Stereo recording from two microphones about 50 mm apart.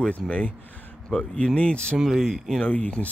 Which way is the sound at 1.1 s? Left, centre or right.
Left.